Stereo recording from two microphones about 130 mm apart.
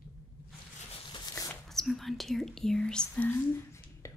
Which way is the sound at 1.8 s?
Centre (ahead or behind).